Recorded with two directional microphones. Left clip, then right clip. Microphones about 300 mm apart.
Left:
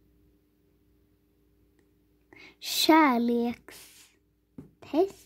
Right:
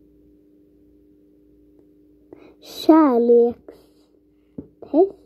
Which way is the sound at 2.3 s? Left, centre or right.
Left.